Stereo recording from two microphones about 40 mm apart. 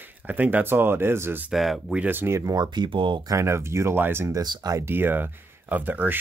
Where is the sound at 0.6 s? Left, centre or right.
Right.